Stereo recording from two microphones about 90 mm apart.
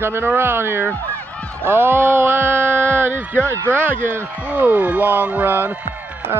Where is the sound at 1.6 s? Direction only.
25° right (ahead or behind).